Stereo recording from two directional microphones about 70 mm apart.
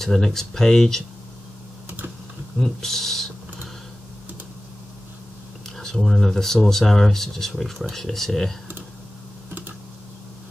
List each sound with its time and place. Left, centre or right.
0.0 s speech: centre
2.6 s speech: centre
5.8 s speech: centre
9.5 s typing: right